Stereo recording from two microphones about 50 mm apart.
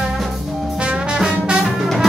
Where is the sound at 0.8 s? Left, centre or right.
Right.